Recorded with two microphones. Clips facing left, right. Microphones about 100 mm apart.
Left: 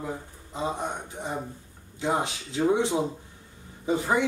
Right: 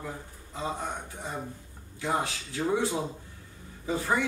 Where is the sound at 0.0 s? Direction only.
20° left (ahead or behind).